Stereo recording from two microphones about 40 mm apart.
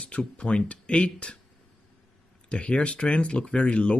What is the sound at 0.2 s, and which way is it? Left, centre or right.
Speech, left.